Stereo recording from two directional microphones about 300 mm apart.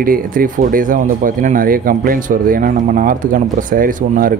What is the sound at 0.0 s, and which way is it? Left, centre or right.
Speech, right.